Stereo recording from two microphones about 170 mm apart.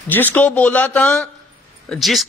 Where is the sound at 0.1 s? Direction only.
10° left (ahead or behind).